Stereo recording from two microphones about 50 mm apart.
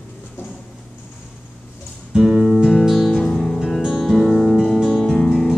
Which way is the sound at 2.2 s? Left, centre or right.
Centre.